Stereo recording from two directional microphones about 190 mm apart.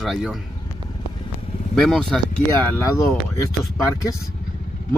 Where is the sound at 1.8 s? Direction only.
Centre (ahead or behind).